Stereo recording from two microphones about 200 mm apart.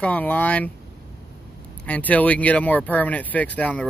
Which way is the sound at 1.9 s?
10° left (ahead or behind).